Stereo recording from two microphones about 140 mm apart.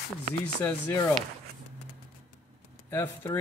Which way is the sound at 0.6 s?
20° left (ahead or behind).